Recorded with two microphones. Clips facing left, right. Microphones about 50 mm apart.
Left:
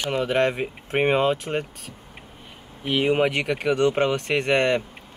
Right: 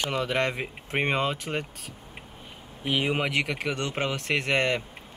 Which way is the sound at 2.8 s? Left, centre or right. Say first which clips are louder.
Left 6 dB; centre.